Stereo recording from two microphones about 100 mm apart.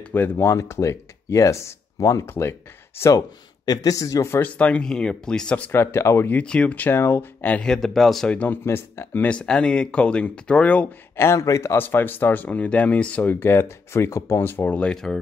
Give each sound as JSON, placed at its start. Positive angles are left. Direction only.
{"t": 0.1, "sound": "speech", "side_deg": 20}
{"t": 4.6, "sound": "speech", "side_deg": 10}
{"t": 5.7, "sound": "speech", "side_deg": 25}
{"t": 8.3, "sound": "speech", "side_deg": 15}
{"t": 8.6, "sound": "speech", "side_deg": 25}
{"t": 11.1, "sound": "speech", "side_deg": 30}